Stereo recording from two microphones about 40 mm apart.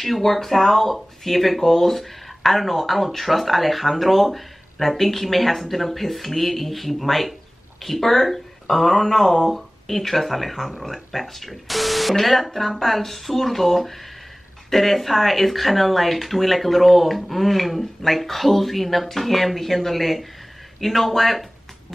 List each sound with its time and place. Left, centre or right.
0.0 s speech: centre